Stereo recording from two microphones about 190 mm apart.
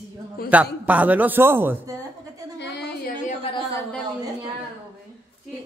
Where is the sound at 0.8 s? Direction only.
10° right (ahead or behind).